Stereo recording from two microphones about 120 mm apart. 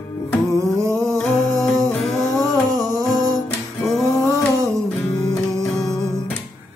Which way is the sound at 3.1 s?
30° left (ahead or behind).